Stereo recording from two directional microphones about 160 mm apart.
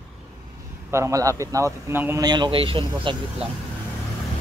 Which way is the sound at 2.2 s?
30° right (ahead or behind).